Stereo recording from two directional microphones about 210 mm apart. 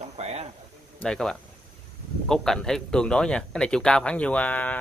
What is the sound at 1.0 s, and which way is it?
Speech, 5° left (ahead or behind).